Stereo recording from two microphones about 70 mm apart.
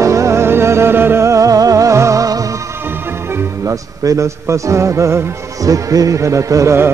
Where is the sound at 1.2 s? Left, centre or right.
Right.